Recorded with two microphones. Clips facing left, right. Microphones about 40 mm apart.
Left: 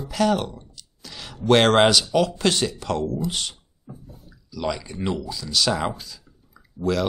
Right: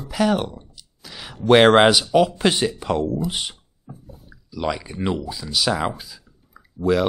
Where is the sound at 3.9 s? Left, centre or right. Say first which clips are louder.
Even; centre.